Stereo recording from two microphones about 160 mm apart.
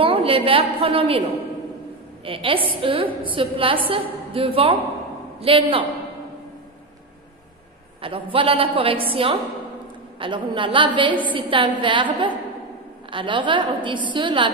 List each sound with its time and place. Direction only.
0.0 s a woman's voice: 35° right (ahead or behind)
2.2 s a woman's voice: 35° right (ahead or behind)
8.0 s a woman's voice: 35° right (ahead or behind)